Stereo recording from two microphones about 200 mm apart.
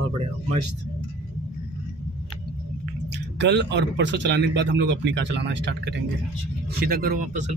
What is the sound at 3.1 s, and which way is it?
Speech, 60° right (ahead or behind).